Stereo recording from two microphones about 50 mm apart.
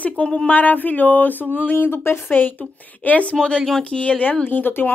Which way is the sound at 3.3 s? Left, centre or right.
Centre.